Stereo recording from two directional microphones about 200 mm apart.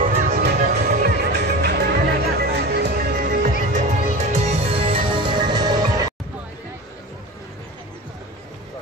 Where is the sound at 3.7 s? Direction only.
35° right (ahead or behind); by 6.1 s 20° right (ahead or behind).